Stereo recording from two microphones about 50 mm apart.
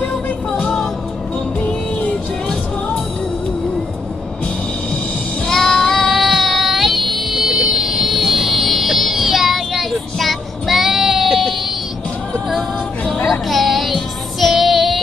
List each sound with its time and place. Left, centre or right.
0.5 s music: centre
1.6 s music: left
5.5 s child singing: centre
13.3 s child singing: centre